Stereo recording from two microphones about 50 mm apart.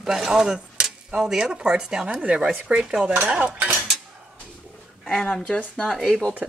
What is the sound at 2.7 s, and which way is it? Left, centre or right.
Speech, centre.